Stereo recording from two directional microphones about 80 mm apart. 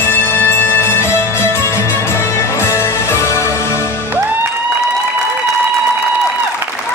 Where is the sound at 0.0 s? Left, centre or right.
Left.